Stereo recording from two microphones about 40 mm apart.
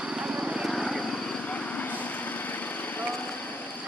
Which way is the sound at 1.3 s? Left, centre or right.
Left.